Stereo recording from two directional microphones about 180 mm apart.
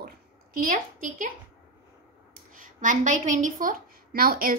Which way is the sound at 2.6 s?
45° right (ahead or behind).